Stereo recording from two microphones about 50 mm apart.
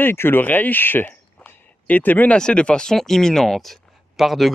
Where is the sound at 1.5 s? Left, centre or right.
Left.